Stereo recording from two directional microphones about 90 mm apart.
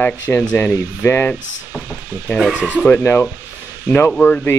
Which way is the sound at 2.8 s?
15° left (ahead or behind).